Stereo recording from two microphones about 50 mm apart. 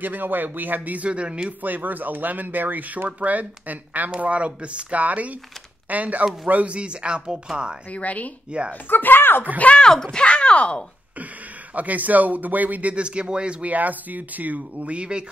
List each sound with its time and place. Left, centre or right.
0.0 s speech: right
1.6 s speech: right; by 7.7 s centre
7.9 s speech: left
8.5 s speech: right
8.8 s speech: left
9.8 s speech: centre
11.7 s speech: right
12.9 s speech: right